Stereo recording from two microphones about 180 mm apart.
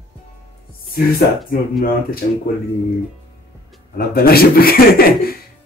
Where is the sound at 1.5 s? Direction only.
55° left (ahead or behind).